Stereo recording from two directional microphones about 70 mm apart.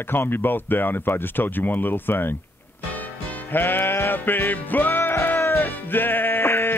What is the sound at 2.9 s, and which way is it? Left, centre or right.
Music, left.